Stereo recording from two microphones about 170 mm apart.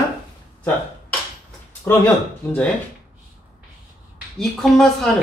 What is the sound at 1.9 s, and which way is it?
Speech, 15° left (ahead or behind).